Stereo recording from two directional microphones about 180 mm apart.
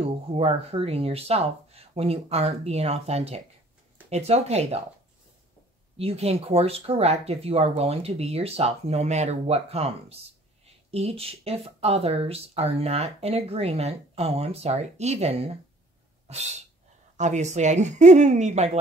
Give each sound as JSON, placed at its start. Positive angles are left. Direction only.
{"t": 0.0, "sound": "speech", "side_deg": -35}
{"t": 5.9, "sound": "speech", "side_deg": -35}
{"t": 16.3, "sound": "cat", "side_deg": -40}
{"t": 17.2, "sound": "speech", "side_deg": -40}